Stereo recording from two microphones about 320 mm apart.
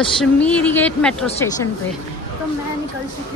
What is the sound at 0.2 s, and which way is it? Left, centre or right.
Speech, centre.